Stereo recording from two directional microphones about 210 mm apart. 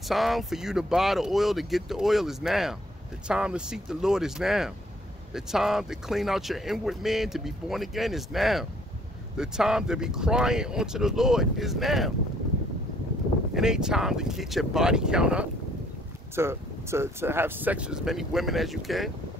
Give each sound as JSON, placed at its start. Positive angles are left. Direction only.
{"t": 0.1, "sound": "speech", "side_deg": 0}
{"t": 13.5, "sound": "speech", "side_deg": -5}